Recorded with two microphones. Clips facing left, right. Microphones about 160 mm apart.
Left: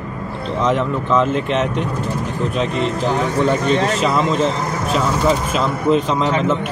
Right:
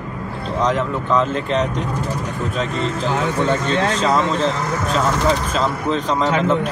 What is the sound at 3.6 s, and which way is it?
Speech, 10° left (ahead or behind).